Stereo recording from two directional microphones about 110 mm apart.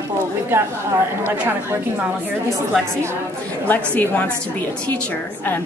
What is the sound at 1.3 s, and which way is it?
A woman's voice, 15° right (ahead or behind).